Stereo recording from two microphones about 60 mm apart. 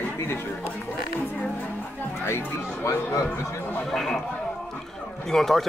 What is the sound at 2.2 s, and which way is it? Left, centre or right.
Speech, left.